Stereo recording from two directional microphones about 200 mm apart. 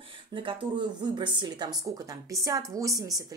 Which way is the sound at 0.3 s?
25° right (ahead or behind).